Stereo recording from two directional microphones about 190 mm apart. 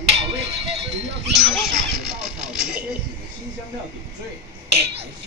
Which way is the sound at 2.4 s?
Centre (ahead or behind).